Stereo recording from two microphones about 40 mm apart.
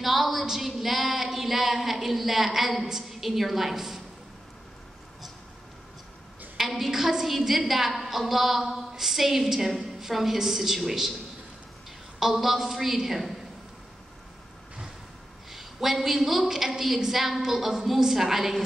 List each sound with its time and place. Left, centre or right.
0.0 s a sound: centre
6.5 s a woman's voice: centre
12.2 s a woman's voice: centre
15.5 s a woman's voice: centre